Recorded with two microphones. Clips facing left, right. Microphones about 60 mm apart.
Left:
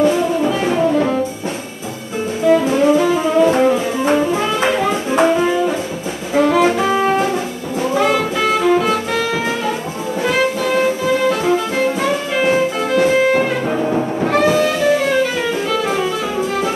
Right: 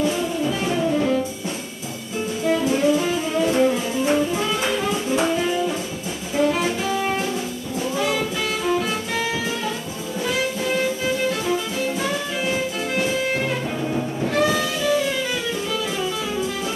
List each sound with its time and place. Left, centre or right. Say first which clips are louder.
0.0 s music: left 8 dB; left
0.6 s music: left 5 dB; left
2.4 s music: left 7 dB; left
6.3 s jazz: left 8 dB; left
7.9 s music: left 8 dB; left
10.2 s music: left 7 dB; left